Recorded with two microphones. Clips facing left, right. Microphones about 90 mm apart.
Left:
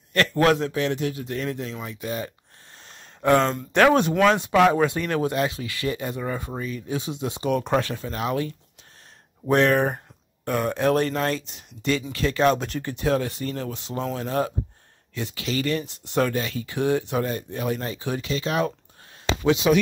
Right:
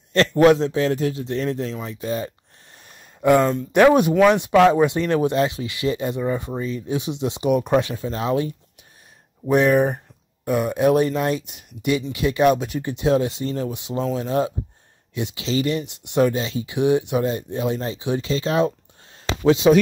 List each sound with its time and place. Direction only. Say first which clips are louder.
0.1 s a man's voice: right 5 dB; 25° right (ahead or behind)
3.2 s speech: right 3 dB; 10° right (ahead or behind)
8.0 s speech: right 4 dB; 25° right (ahead or behind)
9.5 s a man's voice: right 3 dB; 5° right (ahead or behind); by 19.8 s 35° right (ahead or behind)